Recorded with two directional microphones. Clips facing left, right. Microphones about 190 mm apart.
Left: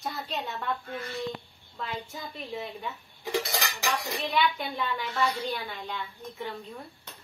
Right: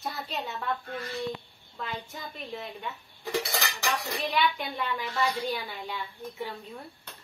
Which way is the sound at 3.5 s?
15° left (ahead or behind).